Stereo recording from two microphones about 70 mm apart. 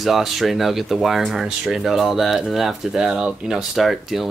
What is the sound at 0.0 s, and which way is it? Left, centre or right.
Speech, centre.